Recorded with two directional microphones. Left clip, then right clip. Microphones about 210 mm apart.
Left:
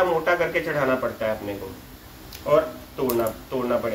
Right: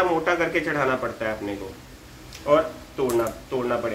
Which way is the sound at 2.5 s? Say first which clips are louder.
Even; 20° right (ahead or behind).